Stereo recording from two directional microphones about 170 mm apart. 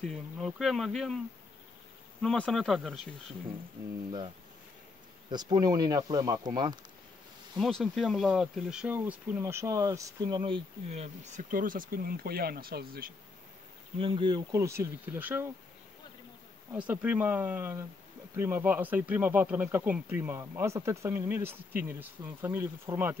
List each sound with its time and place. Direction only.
0.0 s speech: centre (ahead or behind)
2.2 s speech: 5° left (ahead or behind)
5.3 s speech: 25° right (ahead or behind)
7.5 s speech: centre (ahead or behind); by 13.1 s 60° right (ahead or behind)
13.9 s speech: 30° right (ahead or behind); by 15.5 s 10° right (ahead or behind)
16.7 s speech: 10° right (ahead or behind)